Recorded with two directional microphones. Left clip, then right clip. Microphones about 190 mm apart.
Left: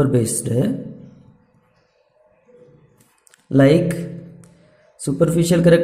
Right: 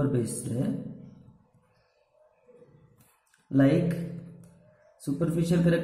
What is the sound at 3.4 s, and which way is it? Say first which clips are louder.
Speech: left 10 dB; 45° left (ahead or behind).